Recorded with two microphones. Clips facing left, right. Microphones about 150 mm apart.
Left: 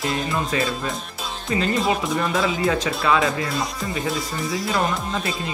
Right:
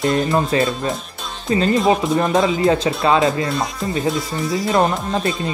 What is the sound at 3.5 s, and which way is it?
Speech, centre (ahead or behind).